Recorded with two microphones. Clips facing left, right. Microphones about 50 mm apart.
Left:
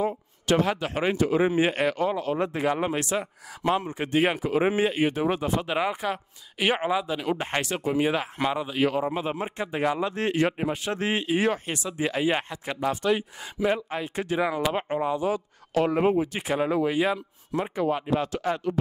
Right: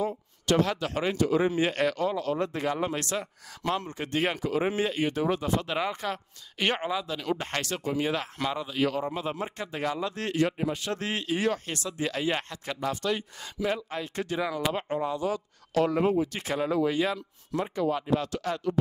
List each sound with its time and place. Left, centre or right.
0.0 s a man's voice: centre